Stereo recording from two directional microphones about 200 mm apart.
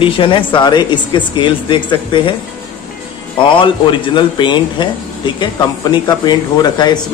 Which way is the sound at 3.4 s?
25° left (ahead or behind).